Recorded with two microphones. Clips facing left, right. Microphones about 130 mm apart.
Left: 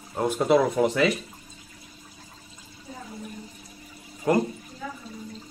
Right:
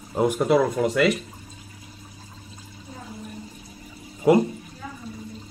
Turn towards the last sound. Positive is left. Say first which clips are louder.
# right 5 dB
turn(degrees=-10)  # may be behind; listen again after turning